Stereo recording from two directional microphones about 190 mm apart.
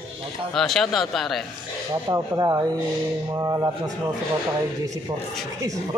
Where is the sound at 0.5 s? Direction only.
Centre (ahead or behind).